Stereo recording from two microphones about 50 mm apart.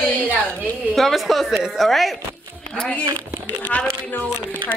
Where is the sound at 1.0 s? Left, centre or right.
Centre.